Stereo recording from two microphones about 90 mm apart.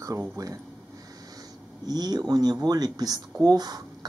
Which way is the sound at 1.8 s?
45° right (ahead or behind).